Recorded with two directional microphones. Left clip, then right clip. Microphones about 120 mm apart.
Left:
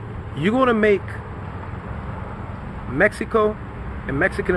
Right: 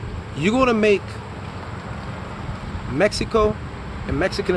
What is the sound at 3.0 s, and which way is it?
Speech, 20° right (ahead or behind).